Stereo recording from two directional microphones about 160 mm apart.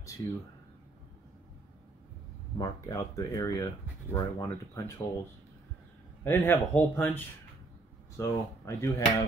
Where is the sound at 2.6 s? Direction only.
20° left (ahead or behind).